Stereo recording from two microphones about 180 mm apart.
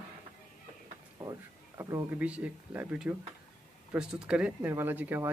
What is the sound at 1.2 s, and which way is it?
Speech, 15° right (ahead or behind).